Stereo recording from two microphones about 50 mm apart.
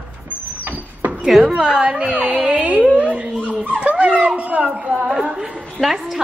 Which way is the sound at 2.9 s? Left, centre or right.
Right.